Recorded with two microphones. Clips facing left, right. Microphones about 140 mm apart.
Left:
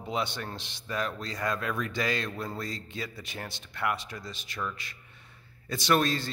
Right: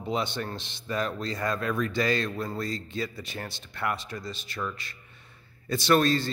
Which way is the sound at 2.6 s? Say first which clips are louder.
Right 5 dB; 10° left (ahead or behind).